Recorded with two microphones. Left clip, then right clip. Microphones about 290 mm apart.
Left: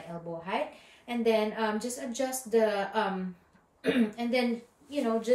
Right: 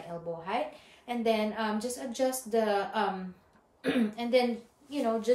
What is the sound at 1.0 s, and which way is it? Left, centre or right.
A woman's voice, centre.